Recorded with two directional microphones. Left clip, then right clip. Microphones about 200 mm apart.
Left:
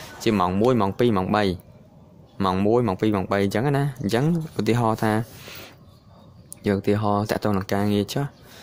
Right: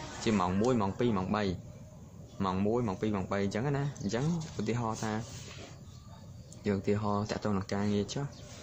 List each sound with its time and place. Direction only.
0.2 s speech: 45° left (ahead or behind)
6.6 s speech: 50° left (ahead or behind)